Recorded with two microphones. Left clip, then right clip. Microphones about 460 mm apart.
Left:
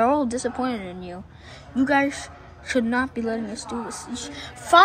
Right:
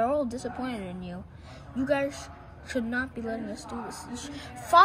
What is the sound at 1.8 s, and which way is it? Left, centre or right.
A woman's voice, centre.